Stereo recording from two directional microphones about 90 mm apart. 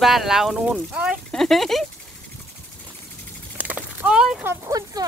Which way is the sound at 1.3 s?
5° left (ahead or behind).